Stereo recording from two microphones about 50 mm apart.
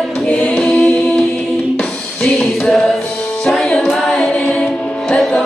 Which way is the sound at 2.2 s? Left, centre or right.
Centre.